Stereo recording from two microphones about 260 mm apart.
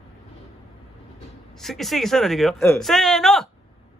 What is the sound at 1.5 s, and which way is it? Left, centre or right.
A man's voice, centre.